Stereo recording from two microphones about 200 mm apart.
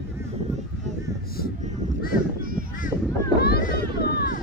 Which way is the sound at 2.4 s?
45° right (ahead or behind).